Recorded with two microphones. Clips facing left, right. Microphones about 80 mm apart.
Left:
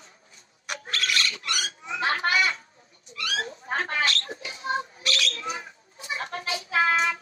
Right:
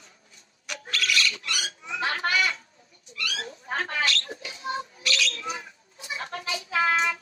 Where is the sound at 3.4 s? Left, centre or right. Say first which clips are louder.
Left 3 dB; left.